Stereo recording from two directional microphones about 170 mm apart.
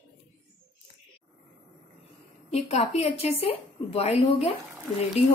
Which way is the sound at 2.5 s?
40° left (ahead or behind).